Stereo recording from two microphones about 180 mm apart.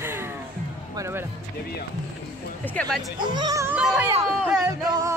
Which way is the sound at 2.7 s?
Centre (ahead or behind).